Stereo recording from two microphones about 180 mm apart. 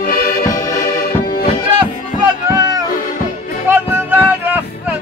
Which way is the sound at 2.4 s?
20° right (ahead or behind).